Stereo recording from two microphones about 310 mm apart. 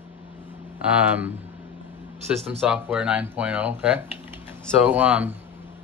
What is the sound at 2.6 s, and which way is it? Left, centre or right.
Speech, centre.